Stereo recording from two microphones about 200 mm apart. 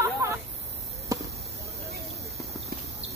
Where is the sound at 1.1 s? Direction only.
15° right (ahead or behind).